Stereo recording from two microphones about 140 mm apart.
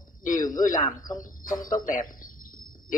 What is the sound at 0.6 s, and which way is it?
Speech, 70° left (ahead or behind).